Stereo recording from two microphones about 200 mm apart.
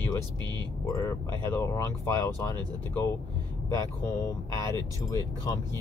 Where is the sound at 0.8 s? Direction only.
15° left (ahead or behind).